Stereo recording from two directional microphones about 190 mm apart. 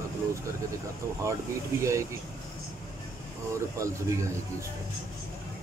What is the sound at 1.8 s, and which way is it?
Speech, 15° right (ahead or behind).